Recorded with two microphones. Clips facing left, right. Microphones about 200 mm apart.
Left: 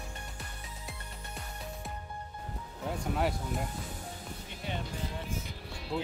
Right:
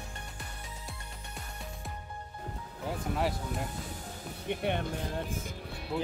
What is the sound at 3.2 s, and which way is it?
Speech, centre (ahead or behind).